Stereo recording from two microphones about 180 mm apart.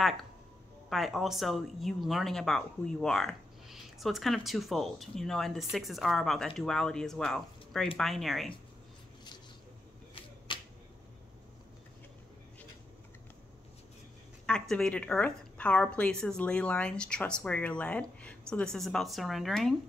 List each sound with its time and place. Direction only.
0.8 s a woman's voice: centre (ahead or behind)
10.5 s a sound: 30° left (ahead or behind)
14.4 s a woman's voice: 5° left (ahead or behind)